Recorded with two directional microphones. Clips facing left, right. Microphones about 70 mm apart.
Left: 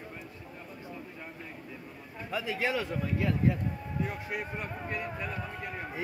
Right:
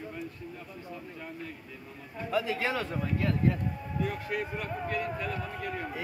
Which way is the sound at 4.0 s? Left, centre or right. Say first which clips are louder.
Right 3 dB; centre.